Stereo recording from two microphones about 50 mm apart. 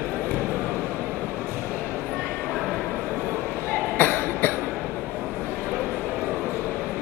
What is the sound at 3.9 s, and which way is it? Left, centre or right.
Cough, left.